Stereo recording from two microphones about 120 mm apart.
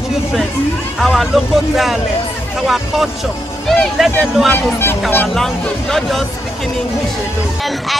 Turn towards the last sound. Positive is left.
turn(degrees=0)  # may be behind; listen again after turning